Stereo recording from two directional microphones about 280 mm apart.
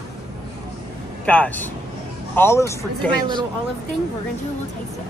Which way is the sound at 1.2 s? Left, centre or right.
Centre.